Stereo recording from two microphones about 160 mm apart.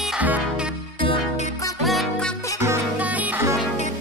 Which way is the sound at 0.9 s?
35° left (ahead or behind).